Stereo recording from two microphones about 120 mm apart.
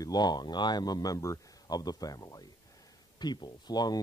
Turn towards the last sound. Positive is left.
turn(degrees=35)  # may be behind; listen again after turning